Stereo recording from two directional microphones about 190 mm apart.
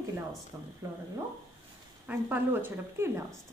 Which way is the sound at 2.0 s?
10° right (ahead or behind).